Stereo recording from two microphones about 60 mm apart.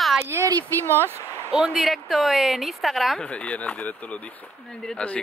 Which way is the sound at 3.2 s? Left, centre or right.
Centre.